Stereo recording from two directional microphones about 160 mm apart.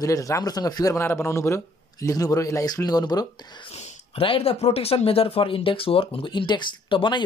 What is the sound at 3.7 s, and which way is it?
Speech, 40° left (ahead or behind).